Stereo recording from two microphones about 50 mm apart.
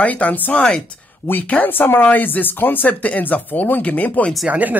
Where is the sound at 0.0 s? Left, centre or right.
Left.